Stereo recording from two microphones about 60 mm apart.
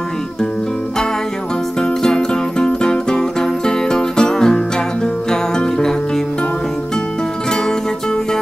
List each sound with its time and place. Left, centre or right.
1.8 s music: centre